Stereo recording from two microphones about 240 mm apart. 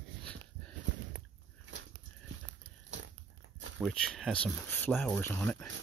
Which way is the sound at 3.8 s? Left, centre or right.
Centre.